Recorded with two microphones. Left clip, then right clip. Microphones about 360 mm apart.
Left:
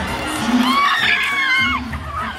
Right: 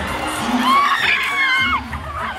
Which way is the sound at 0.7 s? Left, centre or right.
Centre.